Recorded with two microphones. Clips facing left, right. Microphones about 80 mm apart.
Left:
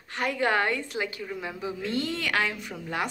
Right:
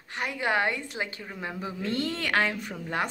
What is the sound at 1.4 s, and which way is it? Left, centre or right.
A woman's voice, right.